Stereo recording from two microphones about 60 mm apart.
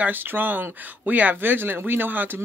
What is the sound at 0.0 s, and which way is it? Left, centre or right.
Speech, right.